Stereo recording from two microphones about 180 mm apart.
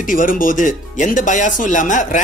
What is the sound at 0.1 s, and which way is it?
Speech, 50° left (ahead or behind).